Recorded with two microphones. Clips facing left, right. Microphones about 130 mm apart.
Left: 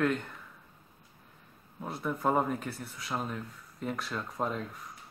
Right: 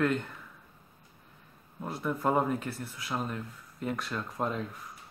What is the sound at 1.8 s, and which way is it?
Speech, centre (ahead or behind).